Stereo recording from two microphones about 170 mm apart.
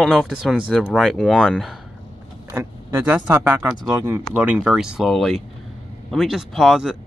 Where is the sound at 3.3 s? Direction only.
10° right (ahead or behind).